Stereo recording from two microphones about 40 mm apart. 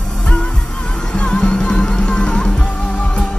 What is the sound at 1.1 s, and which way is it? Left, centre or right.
Music, left.